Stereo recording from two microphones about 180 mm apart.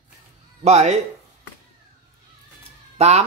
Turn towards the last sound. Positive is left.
turn(degrees=-35)  # may be behind; listen again after turning